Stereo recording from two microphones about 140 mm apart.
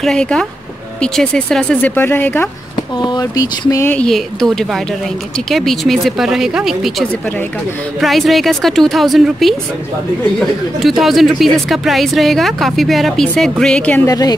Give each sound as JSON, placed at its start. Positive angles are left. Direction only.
{"t": 0.0, "sound": "speech", "side_deg": 5}
{"t": 3.0, "sound": "speech", "side_deg": 30}
{"t": 3.9, "sound": "speech", "side_deg": 5}
{"t": 10.8, "sound": "speech", "side_deg": 0}
{"t": 14.0, "sound": "speech", "side_deg": 25}